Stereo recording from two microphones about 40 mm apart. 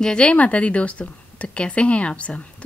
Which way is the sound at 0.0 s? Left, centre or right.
Left.